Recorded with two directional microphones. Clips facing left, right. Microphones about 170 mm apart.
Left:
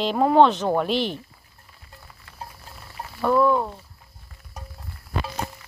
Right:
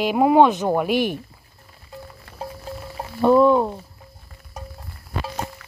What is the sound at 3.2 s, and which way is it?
Speech, 20° right (ahead or behind).